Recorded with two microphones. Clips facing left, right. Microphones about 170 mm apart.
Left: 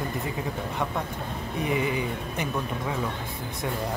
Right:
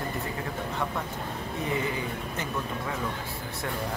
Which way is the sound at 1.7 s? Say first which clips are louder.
Left 4 dB; 15° left (ahead or behind).